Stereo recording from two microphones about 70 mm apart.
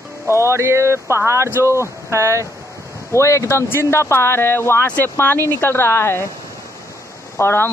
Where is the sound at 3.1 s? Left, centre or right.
Left.